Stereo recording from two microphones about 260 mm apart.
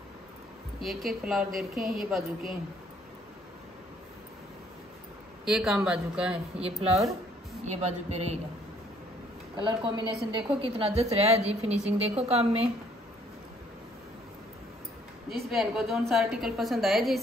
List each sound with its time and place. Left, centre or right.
0.7 s a woman's voice: centre
5.4 s a woman's voice: centre
6.6 s a woman's voice: right
9.6 s a woman's voice: centre
15.2 s a woman's voice: centre